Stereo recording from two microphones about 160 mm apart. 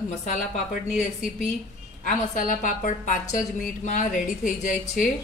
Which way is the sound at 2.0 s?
55° left (ahead or behind).